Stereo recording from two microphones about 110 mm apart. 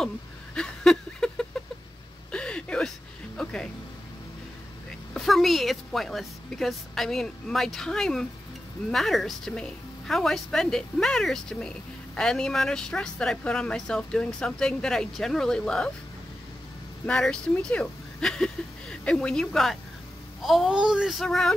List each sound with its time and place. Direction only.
0.6 s a sound: 5° left (ahead or behind)
3.4 s music: 5° left (ahead or behind)
5.1 s a woman's voice: centre (ahead or behind)
17.0 s speech: 10° left (ahead or behind)